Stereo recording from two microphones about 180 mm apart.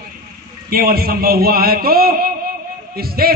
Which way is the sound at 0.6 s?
55° right (ahead or behind).